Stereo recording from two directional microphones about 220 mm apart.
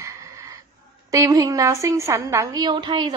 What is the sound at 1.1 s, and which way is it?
A woman's voice, 15° right (ahead or behind).